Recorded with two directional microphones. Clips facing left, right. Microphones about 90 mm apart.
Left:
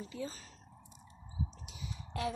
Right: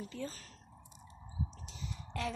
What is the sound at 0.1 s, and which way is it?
Speech, 15° left (ahead or behind).